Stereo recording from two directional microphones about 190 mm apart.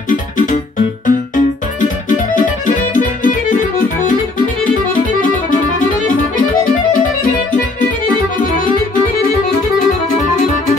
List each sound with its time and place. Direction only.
1.0 s music: 45° left (ahead or behind)